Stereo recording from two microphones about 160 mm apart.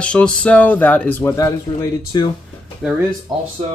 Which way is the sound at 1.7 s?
30° left (ahead or behind).